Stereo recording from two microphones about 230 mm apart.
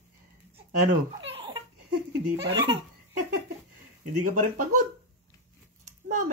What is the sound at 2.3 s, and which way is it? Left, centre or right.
Speech, right.